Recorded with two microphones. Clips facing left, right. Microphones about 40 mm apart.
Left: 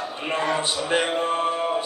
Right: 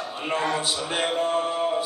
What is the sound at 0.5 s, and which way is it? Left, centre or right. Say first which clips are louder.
Music: left 3 dB; left.